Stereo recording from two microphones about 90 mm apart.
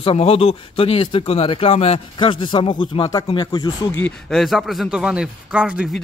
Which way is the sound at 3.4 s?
50° left (ahead or behind).